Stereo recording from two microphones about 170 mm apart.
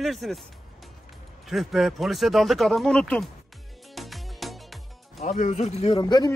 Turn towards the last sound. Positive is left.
turn(degrees=25)  # may be behind; listen again after turning